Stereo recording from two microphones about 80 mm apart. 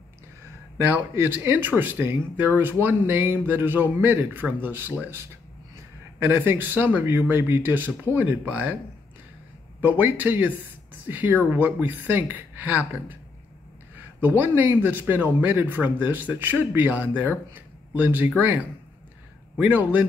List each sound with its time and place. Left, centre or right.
1.1 s speech: right
9.8 s speech: right
19.5 s speech: right